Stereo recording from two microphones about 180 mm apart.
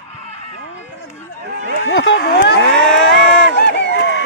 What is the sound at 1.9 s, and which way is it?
Speech, 75° left (ahead or behind).